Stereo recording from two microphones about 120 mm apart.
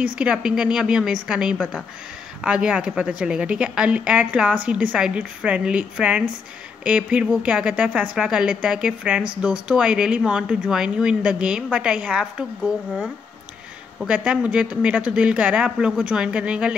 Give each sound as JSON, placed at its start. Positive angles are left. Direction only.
{"t": 0.2, "sound": "speech", "side_deg": -5}
{"t": 14.0, "sound": "speech", "side_deg": -10}